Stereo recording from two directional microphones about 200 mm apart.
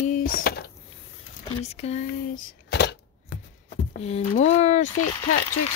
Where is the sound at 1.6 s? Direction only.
30° left (ahead or behind); by 3.3 s 55° left (ahead or behind).